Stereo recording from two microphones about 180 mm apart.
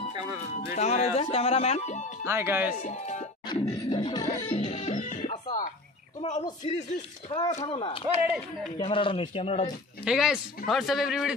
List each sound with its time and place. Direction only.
0.1 s music: 25° right (ahead or behind)
0.7 s music: 40° left (ahead or behind)
2.2 s speech: 15° right (ahead or behind)
2.8 s speech: 40° left (ahead or behind)
3.4 s a sound: 25° left (ahead or behind)
4.5 s music: 35° left (ahead or behind)
7.2 s speech: 25° left (ahead or behind)
8.1 s speech: 10° right (ahead or behind)
8.7 s speech: 30° left (ahead or behind)
10.0 s a man's voice: 5° right (ahead or behind)